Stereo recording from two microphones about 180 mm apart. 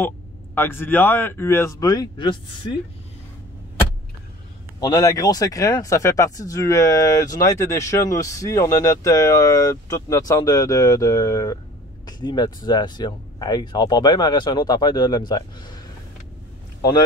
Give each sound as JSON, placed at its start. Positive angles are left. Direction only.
{"t": 0.6, "sound": "speech", "side_deg": 10}
{"t": 4.7, "sound": "speech", "side_deg": 20}